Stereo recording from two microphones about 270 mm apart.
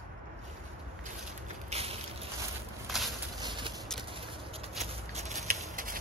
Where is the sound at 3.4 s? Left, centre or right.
Centre.